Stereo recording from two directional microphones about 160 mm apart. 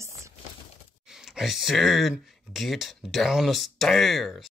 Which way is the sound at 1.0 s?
5° right (ahead or behind).